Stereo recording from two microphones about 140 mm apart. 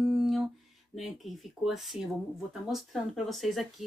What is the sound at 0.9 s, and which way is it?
Speech, centre (ahead or behind).